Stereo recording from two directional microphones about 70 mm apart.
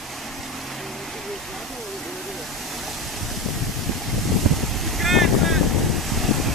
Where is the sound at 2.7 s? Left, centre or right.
Centre.